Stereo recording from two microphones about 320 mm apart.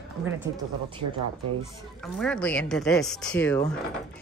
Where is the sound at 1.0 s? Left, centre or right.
Right.